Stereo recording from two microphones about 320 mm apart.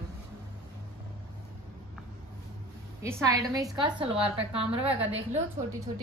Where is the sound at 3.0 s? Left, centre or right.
Centre.